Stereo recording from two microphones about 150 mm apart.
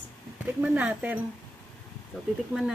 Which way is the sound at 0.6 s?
10° right (ahead or behind).